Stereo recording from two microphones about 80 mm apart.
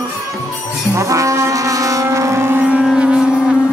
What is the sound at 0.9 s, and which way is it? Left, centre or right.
Music, right.